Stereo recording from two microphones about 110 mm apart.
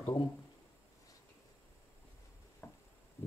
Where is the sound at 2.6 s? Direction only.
15° left (ahead or behind).